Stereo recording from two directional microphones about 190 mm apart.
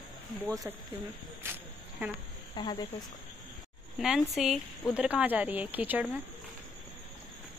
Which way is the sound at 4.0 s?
Centre (ahead or behind).